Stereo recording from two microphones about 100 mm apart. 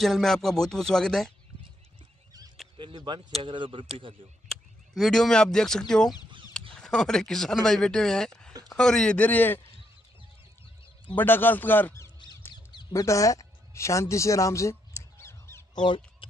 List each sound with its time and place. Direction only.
0.0 s speech: 5° left (ahead or behind)
2.8 s speech: 50° right (ahead or behind)
3.3 s speech: 90° right
3.5 s speech: 60° right (ahead or behind)
4.5 s speech: 5° left (ahead or behind); by 9.7 s 20° left (ahead or behind)
11.1 s a man's voice: 20° left (ahead or behind)
12.2 s duck: 50° left (ahead or behind)
13.0 s a sound: 30° left (ahead or behind)
15.7 s a sound: 50° left (ahead or behind)